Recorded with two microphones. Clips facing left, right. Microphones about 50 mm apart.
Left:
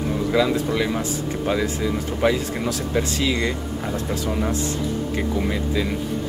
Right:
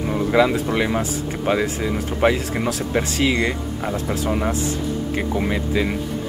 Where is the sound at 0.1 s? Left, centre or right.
Right.